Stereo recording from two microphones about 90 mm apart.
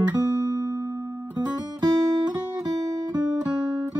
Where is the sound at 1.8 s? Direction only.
45° right (ahead or behind).